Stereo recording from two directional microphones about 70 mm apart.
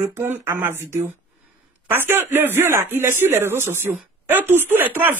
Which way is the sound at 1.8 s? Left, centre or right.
Right.